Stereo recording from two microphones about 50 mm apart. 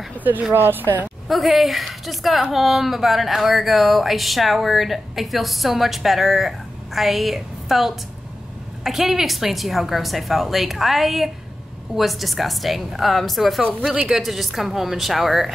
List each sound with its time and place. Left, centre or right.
0.5 s speech: right
1.3 s speech: centre